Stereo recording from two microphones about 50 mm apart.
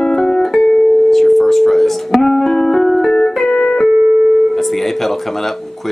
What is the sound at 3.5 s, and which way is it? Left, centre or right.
Music, centre.